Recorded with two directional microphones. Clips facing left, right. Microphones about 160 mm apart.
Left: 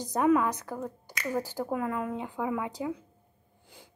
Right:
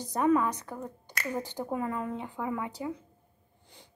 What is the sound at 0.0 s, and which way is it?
A woman's voice, 10° left (ahead or behind).